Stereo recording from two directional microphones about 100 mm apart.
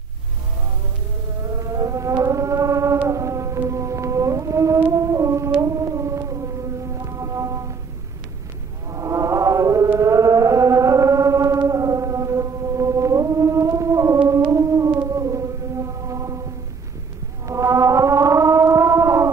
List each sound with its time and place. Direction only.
1.4 s a sound: 30° right (ahead or behind)
3.1 s music: 30° right (ahead or behind)
5.6 s a sound: 30° right (ahead or behind)
6.9 s music: 30° right (ahead or behind)
8.9 s chant: 30° right (ahead or behind)
14.5 s music: 30° right (ahead or behind)
17.5 s music: 30° right (ahead or behind)